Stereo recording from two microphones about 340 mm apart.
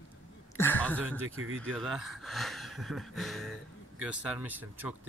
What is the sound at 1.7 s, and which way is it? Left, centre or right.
Speech, centre.